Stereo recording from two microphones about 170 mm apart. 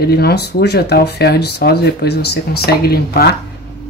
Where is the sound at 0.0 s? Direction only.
70° left (ahead or behind).